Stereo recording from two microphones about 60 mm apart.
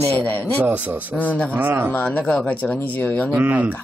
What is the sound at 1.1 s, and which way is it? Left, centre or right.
Speech, left.